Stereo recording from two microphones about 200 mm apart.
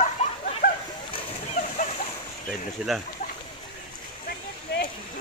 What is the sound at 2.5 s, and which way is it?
Speech, centre (ahead or behind).